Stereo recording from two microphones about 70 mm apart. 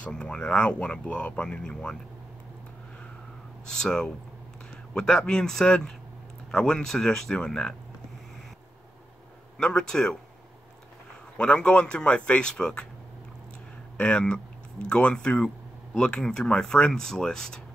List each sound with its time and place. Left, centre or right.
0.0 s speech: centre
3.6 s speech: centre
9.6 s speech: centre
11.3 s speech: centre
13.9 s speech: centre